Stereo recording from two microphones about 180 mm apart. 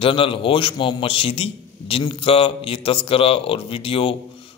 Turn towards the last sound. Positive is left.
turn(degrees=30)  # may be behind; listen again after turning